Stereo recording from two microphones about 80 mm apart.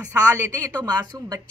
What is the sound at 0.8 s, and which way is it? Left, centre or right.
Speech, right.